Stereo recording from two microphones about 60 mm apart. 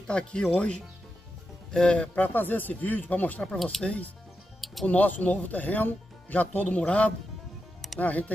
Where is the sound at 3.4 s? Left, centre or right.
Centre.